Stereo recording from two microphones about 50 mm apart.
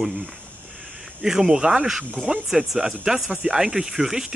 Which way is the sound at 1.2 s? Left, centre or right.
Centre.